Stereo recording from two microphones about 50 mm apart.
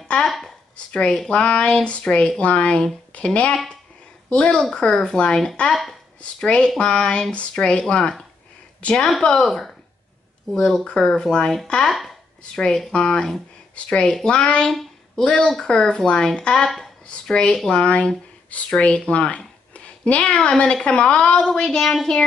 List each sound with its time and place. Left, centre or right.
0.3 s a sound: centre
0.9 s a woman's voice: centre
5.7 s speech: centre
6.4 s speech: centre
8.8 s speech: centre
11.9 s speech: centre
12.5 s speech: centre
16.6 s a woman's voice: centre
17.1 s speech: centre